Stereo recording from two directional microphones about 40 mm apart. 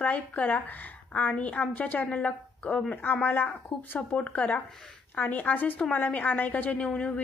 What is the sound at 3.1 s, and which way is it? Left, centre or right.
Speech, left.